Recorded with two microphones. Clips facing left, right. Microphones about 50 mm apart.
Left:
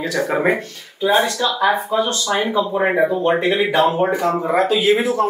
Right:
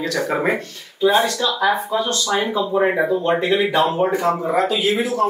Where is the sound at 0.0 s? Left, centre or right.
Centre.